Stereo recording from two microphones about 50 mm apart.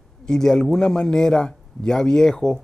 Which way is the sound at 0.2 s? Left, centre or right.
Centre.